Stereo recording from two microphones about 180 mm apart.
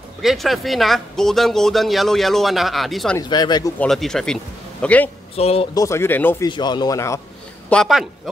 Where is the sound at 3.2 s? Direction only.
25° left (ahead or behind).